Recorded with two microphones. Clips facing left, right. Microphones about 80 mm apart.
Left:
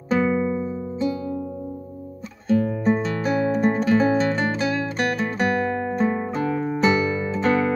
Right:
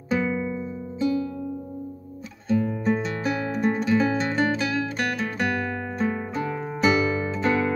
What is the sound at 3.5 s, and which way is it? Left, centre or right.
Music, left.